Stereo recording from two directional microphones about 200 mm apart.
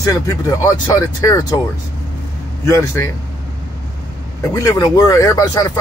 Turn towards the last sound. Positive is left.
turn(degrees=20)  # may be behind; listen again after turning